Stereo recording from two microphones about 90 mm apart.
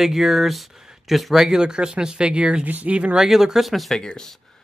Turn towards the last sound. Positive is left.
turn(degrees=5)  # may be behind; listen again after turning